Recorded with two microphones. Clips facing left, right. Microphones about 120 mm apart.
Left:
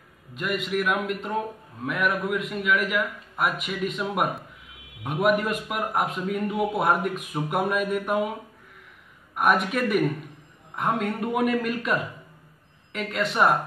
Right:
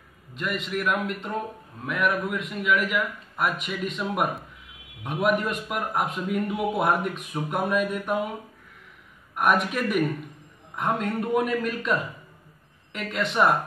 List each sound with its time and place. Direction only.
0.3 s a man's voice: 5° left (ahead or behind)
9.3 s a man's voice: centre (ahead or behind)
11.1 s a man's voice: centre (ahead or behind)